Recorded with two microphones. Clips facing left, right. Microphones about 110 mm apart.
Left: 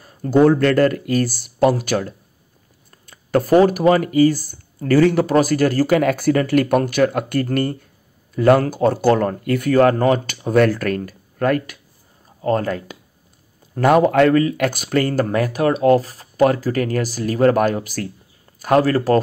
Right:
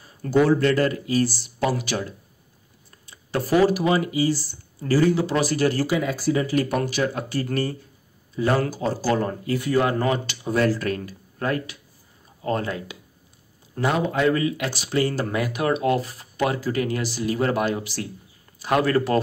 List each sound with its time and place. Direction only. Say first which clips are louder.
0.3 s speech: left 5 dB; 50° left (ahead or behind)
13.7 s speech: left 9 dB; 55° left (ahead or behind)
14.3 s a man's voice: left 7 dB; 45° left (ahead or behind)